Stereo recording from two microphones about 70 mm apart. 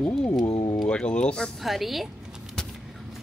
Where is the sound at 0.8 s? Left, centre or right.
Centre.